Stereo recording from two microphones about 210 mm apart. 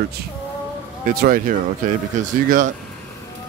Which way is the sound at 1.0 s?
45° right (ahead or behind).